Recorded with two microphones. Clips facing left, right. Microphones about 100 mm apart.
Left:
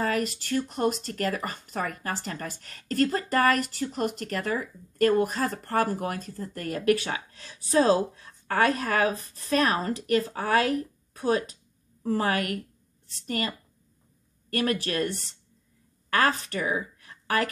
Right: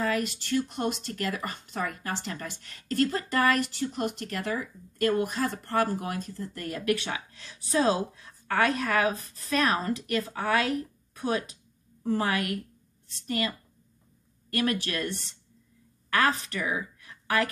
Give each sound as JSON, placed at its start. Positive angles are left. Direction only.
{"t": 0.0, "sound": "speech", "side_deg": 40}
{"t": 14.5, "sound": "speech", "side_deg": 40}